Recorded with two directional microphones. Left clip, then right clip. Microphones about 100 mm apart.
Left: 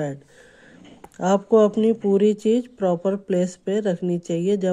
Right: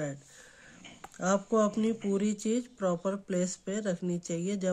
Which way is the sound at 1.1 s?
50° left (ahead or behind).